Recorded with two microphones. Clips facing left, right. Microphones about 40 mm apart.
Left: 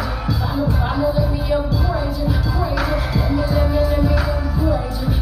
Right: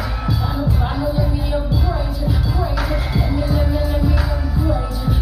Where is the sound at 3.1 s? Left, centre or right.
Right.